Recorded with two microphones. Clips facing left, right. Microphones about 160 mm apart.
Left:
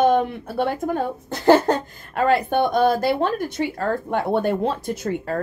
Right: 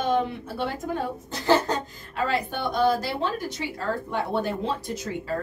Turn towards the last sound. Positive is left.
turn(degrees=55)  # may be behind; listen again after turning